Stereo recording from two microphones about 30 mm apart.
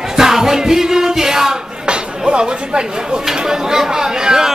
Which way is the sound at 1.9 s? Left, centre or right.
Right.